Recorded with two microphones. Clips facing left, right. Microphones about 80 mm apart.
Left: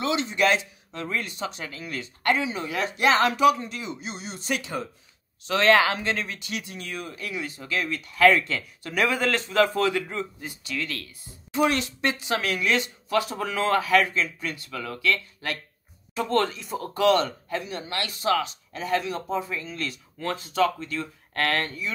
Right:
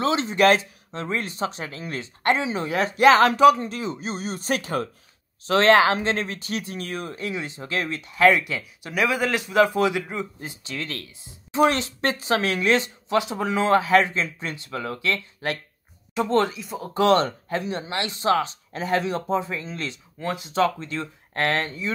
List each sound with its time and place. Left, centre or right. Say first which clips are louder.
0.0 s speech: right 4 dB; right
0.9 s speech: right 3 dB; right
5.4 s speech: right 3 dB; right
7.2 s speech: right 3 dB; right
8.0 s a man's voice: right 1 dB; centre
10.4 s speech: even; right
16.2 s speech: right 3 dB; centre
16.5 s speech: left 1 dB; centre
16.9 s speech: right 2 dB; right
20.2 s a man's voice: right 1 dB; centre
20.5 s speech: right 1 dB; right